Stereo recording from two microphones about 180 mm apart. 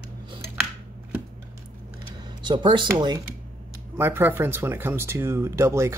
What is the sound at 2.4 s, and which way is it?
Speech, 25° right (ahead or behind).